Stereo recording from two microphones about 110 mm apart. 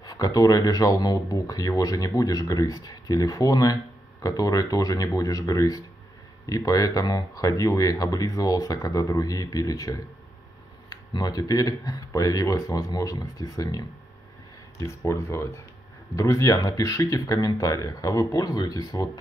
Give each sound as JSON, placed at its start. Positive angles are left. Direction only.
{"t": 0.0, "sound": "speech", "side_deg": 35}